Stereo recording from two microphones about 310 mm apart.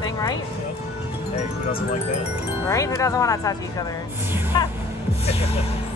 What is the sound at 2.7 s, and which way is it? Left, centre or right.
Speech, centre.